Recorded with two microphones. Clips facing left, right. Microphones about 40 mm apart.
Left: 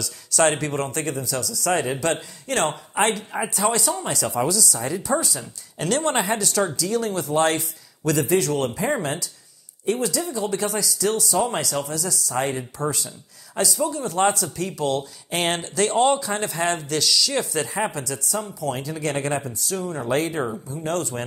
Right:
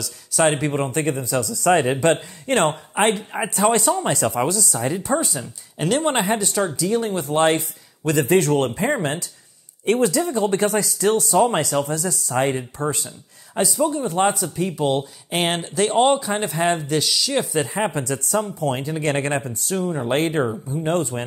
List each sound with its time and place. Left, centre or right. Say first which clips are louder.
0.3 s speech: right 2 dB; centre
4.0 s speech: right 3 dB; right
5.4 s speech: right 4 dB; centre
8.2 s speech: right 5 dB; right
15.3 s speech: right 2 dB; centre
17.9 s speech: right 5 dB; right
19.8 s speech: right 6 dB; centre
20.1 s speech: right 2 dB; right
20.8 s speech: right 3 dB; right